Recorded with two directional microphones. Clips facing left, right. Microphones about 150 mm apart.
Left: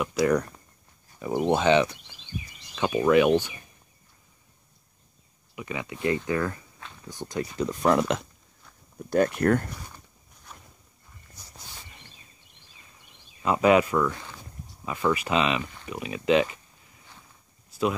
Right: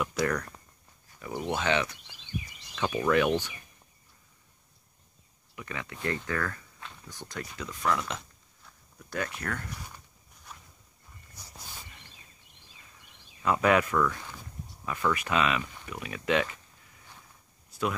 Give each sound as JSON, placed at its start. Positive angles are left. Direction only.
{"t": 0.0, "sound": "speech", "side_deg": 10}
{"t": 1.2, "sound": "speech", "side_deg": 25}
{"t": 5.6, "sound": "speech", "side_deg": 15}
{"t": 7.5, "sound": "speech", "side_deg": 35}
{"t": 9.8, "sound": "a sound", "side_deg": -5}
{"t": 13.4, "sound": "speech", "side_deg": 20}